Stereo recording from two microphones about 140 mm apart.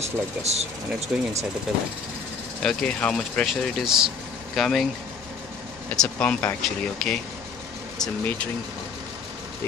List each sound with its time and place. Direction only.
0.0 s speech: 50° right (ahead or behind)
1.1 s speech: 10° right (ahead or behind)
2.6 s speech: 5° left (ahead or behind)
5.9 s speech: 10° left (ahead or behind)